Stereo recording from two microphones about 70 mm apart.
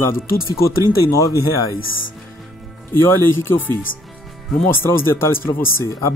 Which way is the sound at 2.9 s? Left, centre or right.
Left.